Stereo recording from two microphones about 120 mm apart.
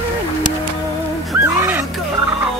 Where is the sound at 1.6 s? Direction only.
15° right (ahead or behind).